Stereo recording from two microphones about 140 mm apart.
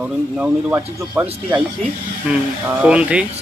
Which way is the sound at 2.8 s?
10° right (ahead or behind).